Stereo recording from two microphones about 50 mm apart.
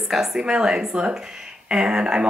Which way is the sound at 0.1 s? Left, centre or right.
Centre.